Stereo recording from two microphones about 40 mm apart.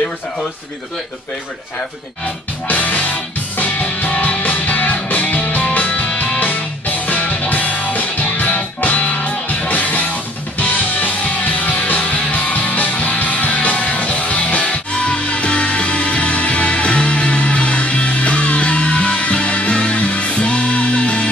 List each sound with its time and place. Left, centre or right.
2.7 s music: left
6.4 s music: left